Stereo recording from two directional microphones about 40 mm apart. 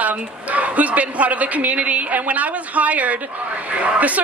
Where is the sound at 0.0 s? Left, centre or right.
Right.